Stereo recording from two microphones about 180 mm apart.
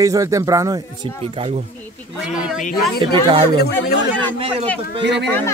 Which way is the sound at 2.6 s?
55° left (ahead or behind).